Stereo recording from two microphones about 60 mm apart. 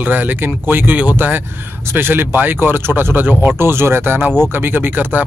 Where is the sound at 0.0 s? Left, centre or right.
Right.